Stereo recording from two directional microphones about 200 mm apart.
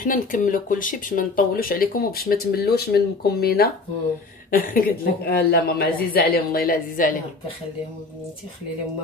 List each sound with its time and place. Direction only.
0.0 s speech: 45° left (ahead or behind)